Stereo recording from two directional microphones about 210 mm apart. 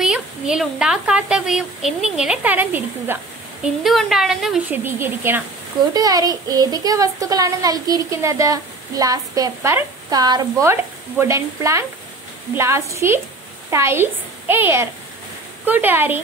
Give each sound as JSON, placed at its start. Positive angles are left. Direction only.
{"t": 0.0, "sound": "a woman's voice", "side_deg": -5}